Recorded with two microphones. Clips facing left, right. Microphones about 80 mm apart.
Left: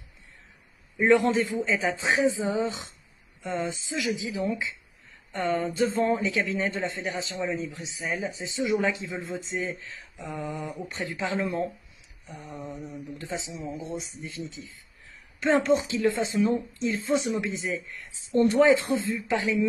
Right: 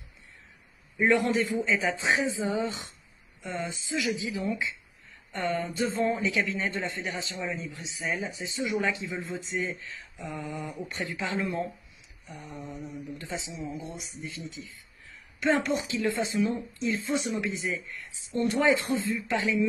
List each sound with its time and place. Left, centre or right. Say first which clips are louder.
0.9 s a man's voice: left 3 dB; left
18.3 s a woman's voice: left 6 dB; left
18.6 s a man's voice: left 2 dB; left